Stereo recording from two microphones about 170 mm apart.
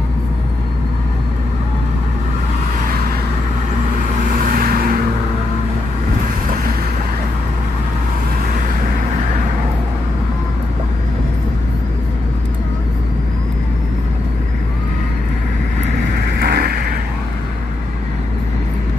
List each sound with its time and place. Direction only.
4.4 s vehicle: 55° right (ahead or behind)
16.3 s vehicle: 65° right (ahead or behind)